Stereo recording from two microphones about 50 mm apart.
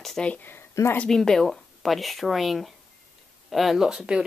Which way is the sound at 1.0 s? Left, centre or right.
Centre.